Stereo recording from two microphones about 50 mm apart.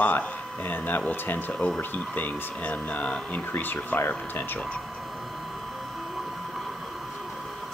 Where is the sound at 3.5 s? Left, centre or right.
Left.